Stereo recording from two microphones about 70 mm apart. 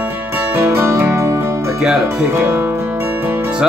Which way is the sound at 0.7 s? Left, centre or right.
Right.